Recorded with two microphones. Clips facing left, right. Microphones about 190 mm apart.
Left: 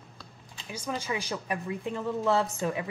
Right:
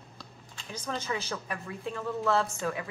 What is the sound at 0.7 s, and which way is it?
Speech, 10° left (ahead or behind).